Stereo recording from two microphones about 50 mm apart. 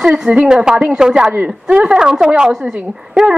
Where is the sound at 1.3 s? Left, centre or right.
Right.